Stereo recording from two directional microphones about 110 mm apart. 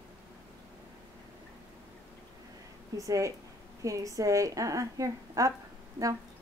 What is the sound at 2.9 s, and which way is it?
A woman's voice, 30° right (ahead or behind).